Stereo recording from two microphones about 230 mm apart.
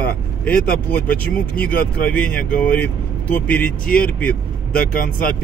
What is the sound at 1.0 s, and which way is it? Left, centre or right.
Speech, centre.